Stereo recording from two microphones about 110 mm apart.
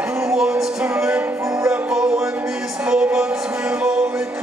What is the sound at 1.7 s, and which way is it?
Music, 5° right (ahead or behind).